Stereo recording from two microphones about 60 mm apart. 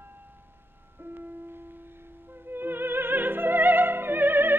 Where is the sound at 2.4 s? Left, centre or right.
Right.